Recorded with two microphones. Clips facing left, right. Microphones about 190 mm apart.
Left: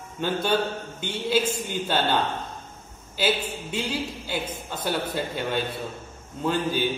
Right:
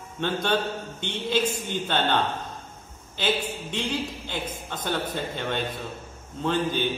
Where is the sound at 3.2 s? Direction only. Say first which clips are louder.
Left 1 dB; 5° left (ahead or behind).